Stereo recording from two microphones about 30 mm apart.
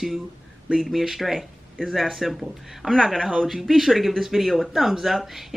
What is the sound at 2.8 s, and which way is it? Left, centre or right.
Speech, left.